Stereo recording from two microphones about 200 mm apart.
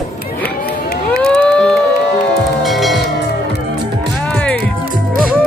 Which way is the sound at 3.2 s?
55° left (ahead or behind).